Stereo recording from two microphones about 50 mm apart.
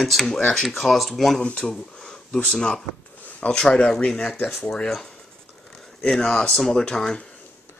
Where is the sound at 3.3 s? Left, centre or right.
Left.